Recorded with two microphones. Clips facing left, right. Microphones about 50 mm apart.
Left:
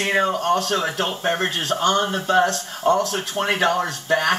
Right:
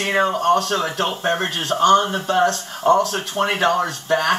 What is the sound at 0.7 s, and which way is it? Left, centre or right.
Speech, centre.